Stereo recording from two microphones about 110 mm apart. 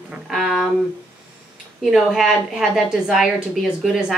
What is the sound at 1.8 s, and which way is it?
Speech, 5° right (ahead or behind).